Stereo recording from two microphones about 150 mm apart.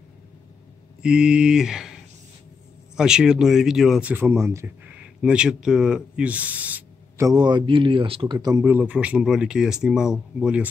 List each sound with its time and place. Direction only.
1.0 s speech: 5° right (ahead or behind)
3.0 s speech: 5° right (ahead or behind)
4.1 s speech: 15° right (ahead or behind)
5.2 s speech: 5° right (ahead or behind)
7.2 s a man's voice: 25° right (ahead or behind)
8.6 s speech: 10° right (ahead or behind)